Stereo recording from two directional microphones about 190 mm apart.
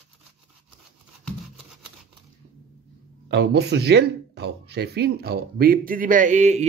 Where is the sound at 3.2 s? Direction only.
65° right (ahead or behind).